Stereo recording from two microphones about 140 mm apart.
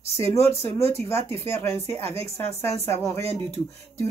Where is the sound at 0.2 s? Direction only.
20° left (ahead or behind).